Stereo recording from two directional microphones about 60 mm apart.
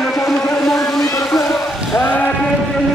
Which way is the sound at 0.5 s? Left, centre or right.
Centre.